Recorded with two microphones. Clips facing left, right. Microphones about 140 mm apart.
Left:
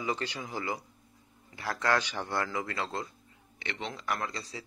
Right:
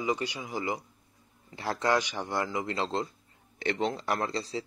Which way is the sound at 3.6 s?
35° right (ahead or behind).